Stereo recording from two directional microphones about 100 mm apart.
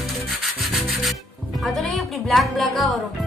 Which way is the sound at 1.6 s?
Centre (ahead or behind).